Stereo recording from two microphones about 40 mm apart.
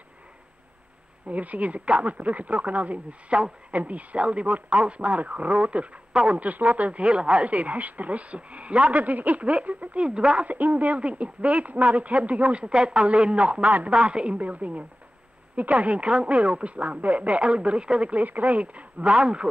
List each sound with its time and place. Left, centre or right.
1.2 s speech: right
10.0 s speech: right
10.4 s speech: right
11.0 s speech: right
18.1 s speech: right